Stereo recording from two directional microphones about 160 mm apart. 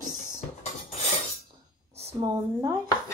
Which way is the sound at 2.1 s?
20° right (ahead or behind).